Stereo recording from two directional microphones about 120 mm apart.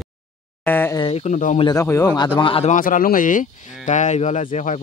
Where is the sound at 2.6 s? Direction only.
90° left.